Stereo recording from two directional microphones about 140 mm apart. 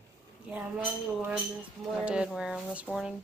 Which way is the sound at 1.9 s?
5° right (ahead or behind).